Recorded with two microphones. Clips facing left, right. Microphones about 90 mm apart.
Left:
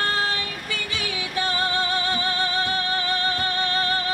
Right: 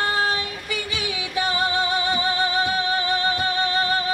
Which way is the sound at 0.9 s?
20° right (ahead or behind).